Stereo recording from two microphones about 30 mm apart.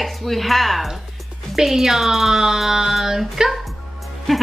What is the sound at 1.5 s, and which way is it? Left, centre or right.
Speech, centre.